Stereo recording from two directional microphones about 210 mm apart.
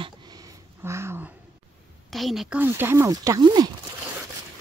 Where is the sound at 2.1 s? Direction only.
Centre (ahead or behind); by 3.7 s 20° right (ahead or behind).